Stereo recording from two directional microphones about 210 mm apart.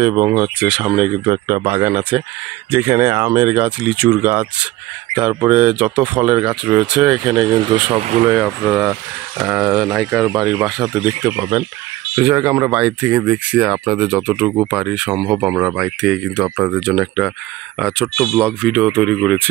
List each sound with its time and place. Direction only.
0.0 s speech: 10° right (ahead or behind)
1.2 s speech: 15° right (ahead or behind)
7.3 s speech: 20° right (ahead or behind)
8.3 s speech: 10° right (ahead or behind)
11.2 s speech: 15° right (ahead or behind); by 19.5 s 5° left (ahead or behind)